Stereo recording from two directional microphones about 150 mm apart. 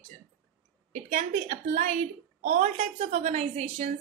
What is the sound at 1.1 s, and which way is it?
A woman's voice, 50° right (ahead or behind).